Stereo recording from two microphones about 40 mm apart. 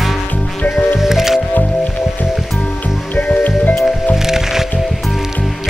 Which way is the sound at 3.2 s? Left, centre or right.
Left.